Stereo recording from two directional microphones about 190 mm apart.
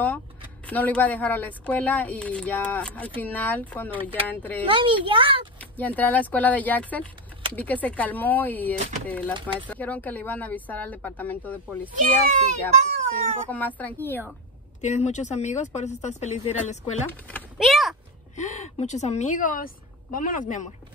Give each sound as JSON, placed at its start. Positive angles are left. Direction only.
{"t": 0.7, "sound": "speech", "side_deg": 10}
{"t": 4.6, "sound": "speech", "side_deg": -25}
{"t": 5.6, "sound": "speech", "side_deg": 10}
{"t": 12.0, "sound": "speech", "side_deg": -40}
{"t": 13.5, "sound": "speech", "side_deg": 10}
{"t": 14.8, "sound": "speech", "side_deg": 40}
{"t": 17.6, "sound": "a sound", "side_deg": 0}
{"t": 18.3, "sound": "a woman's voice", "side_deg": 40}